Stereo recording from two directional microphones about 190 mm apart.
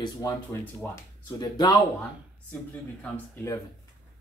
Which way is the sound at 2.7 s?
10° left (ahead or behind).